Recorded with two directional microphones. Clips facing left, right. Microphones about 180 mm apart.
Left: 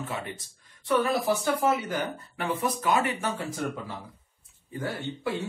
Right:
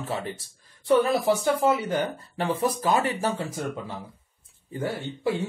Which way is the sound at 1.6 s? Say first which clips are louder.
Right 3 dB; 30° right (ahead or behind).